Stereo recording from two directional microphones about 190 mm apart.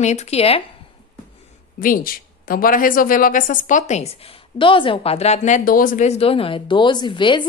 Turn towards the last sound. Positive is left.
turn(degrees=25)  # may be behind; listen again after turning